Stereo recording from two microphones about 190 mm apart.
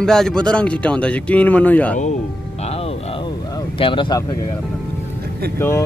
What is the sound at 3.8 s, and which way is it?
Speech, 25° left (ahead or behind).